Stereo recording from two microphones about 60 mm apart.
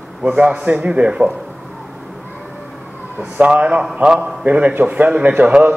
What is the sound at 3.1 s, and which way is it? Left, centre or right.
A man's voice, right.